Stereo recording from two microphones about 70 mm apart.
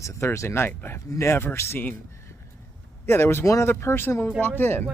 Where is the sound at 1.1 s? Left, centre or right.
Left.